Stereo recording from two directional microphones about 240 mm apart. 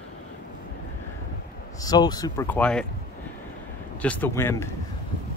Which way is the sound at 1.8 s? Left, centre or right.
Centre.